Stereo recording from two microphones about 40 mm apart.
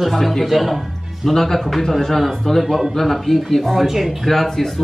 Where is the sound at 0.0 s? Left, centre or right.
Centre.